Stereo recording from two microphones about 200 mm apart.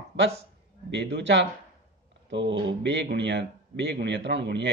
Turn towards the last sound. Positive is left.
turn(degrees=-60)  # may be behind; listen again after turning